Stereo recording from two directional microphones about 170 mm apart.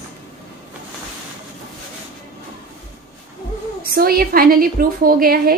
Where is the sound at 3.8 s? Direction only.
60° right (ahead or behind).